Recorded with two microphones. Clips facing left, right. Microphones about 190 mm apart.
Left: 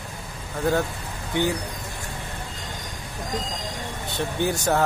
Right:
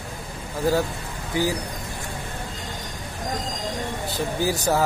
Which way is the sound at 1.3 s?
5° right (ahead or behind).